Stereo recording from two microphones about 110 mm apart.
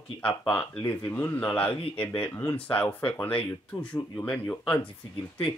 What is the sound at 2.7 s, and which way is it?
Speech, 15° left (ahead or behind).